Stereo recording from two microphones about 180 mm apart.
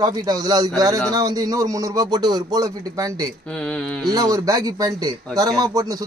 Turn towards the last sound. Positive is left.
turn(degrees=-20)  # may be behind; listen again after turning